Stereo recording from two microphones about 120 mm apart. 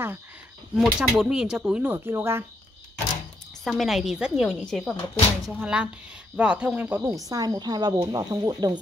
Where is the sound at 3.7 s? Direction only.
Centre (ahead or behind).